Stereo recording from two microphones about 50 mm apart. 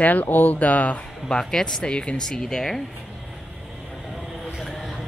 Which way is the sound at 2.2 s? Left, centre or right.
Centre.